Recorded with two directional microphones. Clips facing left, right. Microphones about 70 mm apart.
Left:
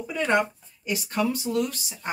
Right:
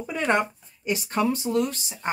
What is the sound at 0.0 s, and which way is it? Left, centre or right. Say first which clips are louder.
Speech: even; right.